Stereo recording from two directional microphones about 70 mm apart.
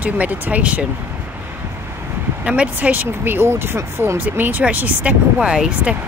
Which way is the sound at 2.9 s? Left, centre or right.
Right.